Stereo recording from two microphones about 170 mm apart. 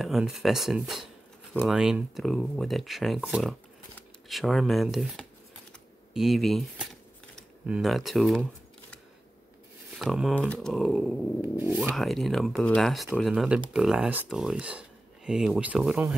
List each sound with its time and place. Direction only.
0.0 s speech: centre (ahead or behind)
5.7 s shuffling cards: centre (ahead or behind)
7.6 s speech: 5° right (ahead or behind)
9.9 s speech: centre (ahead or behind)
11.5 s speech: 10° right (ahead or behind)